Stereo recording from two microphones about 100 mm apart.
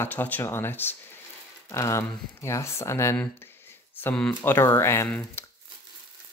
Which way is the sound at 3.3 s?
20° left (ahead or behind).